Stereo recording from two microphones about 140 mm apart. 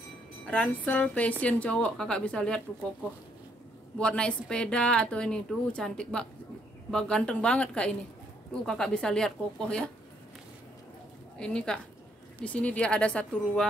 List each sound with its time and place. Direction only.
0.5 s speech: 10° left (ahead or behind)
4.0 s speech: 5° left (ahead or behind)
11.3 s speech: 5° left (ahead or behind)